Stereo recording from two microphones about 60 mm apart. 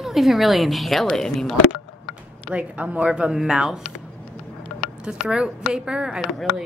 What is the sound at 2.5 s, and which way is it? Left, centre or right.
Speech, right.